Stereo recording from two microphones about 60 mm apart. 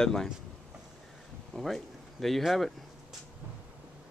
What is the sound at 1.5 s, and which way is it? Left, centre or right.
Speech, centre.